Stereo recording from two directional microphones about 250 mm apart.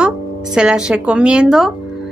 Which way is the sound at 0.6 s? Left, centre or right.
Centre.